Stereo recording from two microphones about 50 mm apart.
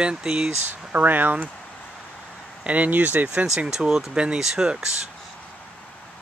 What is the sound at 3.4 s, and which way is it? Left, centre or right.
Speech, centre.